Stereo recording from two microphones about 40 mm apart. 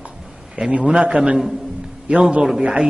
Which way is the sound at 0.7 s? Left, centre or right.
Right.